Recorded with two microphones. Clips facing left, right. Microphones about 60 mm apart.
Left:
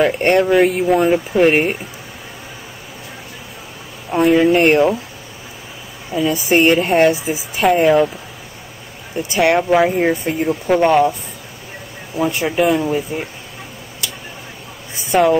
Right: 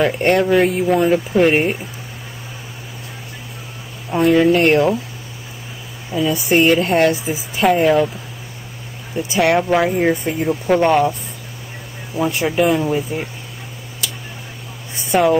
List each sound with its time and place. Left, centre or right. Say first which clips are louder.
0.0 s speech: left 1 dB; centre
4.1 s speech: left 1 dB; centre
6.2 s speech: left 1 dB; centre
9.6 s speech: left 2 dB; centre
12.2 s speech: even; centre
15.0 s speech: left 1 dB; centre